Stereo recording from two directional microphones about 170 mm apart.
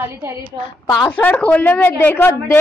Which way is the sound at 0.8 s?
10° left (ahead or behind).